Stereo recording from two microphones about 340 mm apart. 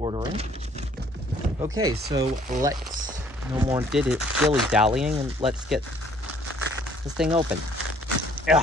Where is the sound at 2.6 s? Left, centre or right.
Centre.